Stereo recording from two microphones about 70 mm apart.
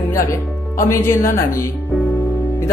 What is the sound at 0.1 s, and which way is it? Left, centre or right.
Speech, left.